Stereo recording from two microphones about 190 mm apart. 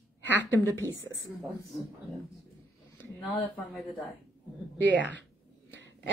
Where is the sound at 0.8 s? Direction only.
20° right (ahead or behind).